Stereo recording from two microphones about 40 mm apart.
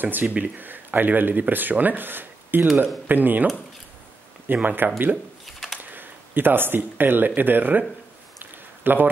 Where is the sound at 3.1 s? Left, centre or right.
Right.